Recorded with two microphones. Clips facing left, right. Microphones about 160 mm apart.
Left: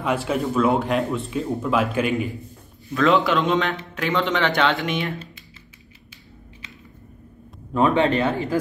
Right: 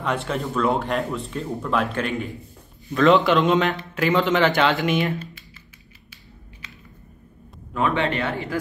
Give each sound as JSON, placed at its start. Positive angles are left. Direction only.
{"t": 0.0, "sound": "speech", "side_deg": 5}
{"t": 7.7, "sound": "speech", "side_deg": 30}